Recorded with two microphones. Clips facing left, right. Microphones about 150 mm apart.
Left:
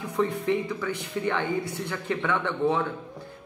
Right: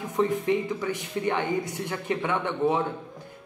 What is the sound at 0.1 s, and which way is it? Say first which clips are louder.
Speech: right 1 dB; 20° right (ahead or behind).